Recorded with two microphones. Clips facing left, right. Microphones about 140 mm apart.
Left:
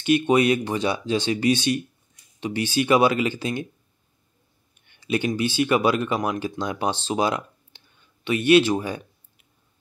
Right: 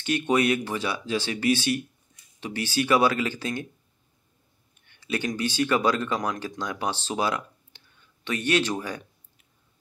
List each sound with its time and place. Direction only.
0.0 s speech: 15° left (ahead or behind)
4.8 s speech: 20° left (ahead or behind)
7.1 s a sound: 20° left (ahead or behind)